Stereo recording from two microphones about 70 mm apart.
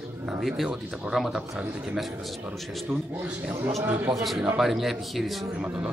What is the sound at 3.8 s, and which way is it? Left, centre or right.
Speech, right.